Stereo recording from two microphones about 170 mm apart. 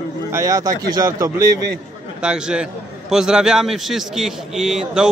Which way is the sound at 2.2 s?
5° right (ahead or behind).